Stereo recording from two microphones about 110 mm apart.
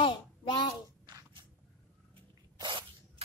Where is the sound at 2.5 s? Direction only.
40° right (ahead or behind).